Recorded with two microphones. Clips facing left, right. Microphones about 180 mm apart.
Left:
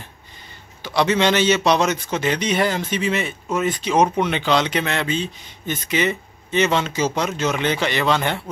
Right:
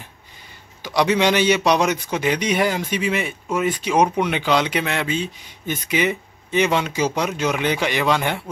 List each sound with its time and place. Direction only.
0.8 s speech: 10° right (ahead or behind)